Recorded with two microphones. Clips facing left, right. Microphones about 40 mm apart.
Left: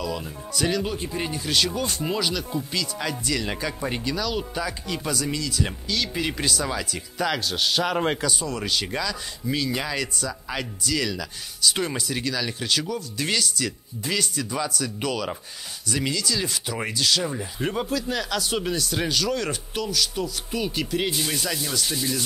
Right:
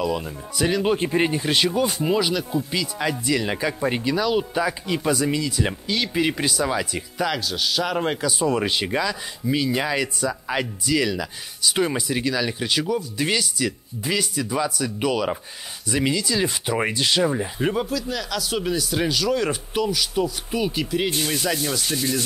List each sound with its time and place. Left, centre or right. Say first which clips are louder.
0.0 s speech: right 5 dB; centre
0.8 s speech: right 8 dB; right; by 7.1 s centre
7.2 s speech: even; centre
8.4 s speech: right 6 dB; right
17.7 s speech: right 1 dB; centre
21.3 s speech: right 4 dB; centre
21.9 s sanding: right 3 dB; right